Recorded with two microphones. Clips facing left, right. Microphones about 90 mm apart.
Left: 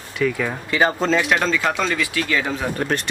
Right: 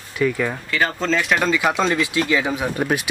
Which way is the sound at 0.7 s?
20° left (ahead or behind).